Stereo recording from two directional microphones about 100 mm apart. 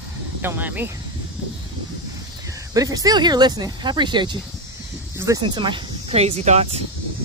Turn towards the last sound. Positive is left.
turn(degrees=-80)